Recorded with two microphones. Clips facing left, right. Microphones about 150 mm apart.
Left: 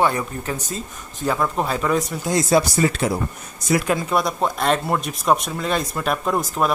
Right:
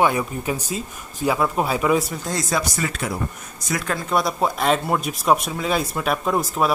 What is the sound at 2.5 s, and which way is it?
Speech, 30° left (ahead or behind).